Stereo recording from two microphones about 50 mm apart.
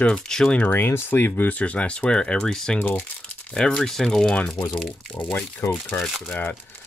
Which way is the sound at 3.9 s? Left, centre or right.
Centre.